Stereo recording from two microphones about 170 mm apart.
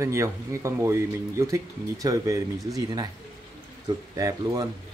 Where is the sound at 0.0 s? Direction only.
15° right (ahead or behind).